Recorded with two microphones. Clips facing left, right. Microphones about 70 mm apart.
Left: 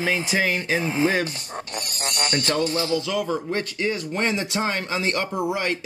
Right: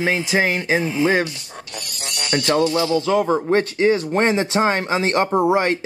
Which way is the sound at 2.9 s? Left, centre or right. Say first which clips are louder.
Right 6 dB; right.